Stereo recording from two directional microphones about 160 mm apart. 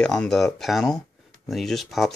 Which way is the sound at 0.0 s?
5° left (ahead or behind).